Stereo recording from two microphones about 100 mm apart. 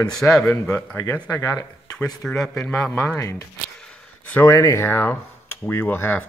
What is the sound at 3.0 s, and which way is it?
Speech, 25° left (ahead or behind).